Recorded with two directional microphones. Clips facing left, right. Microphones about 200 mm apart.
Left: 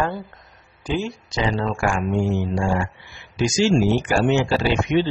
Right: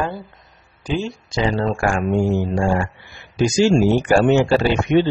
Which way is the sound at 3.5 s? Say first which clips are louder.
Right 3 dB; 50° right (ahead or behind).